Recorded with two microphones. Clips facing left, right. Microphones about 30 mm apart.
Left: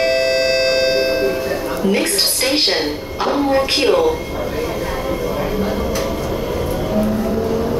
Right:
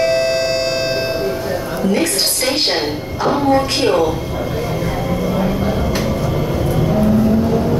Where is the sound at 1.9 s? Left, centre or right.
Left.